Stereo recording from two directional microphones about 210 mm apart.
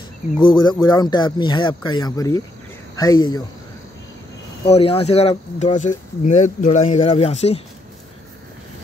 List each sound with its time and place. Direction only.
0.4 s speech: 20° left (ahead or behind)
4.6 s speech: 30° left (ahead or behind)
6.2 s speech: 35° left (ahead or behind)